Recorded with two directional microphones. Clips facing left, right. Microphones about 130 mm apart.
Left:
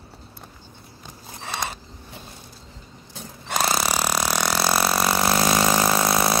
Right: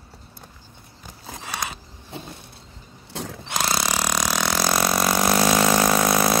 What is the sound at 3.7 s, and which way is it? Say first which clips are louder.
Engine: left 1 dB; 5° left (ahead or behind).